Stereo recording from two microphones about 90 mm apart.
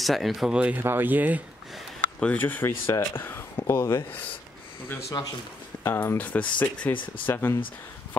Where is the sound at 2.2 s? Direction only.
15° left (ahead or behind).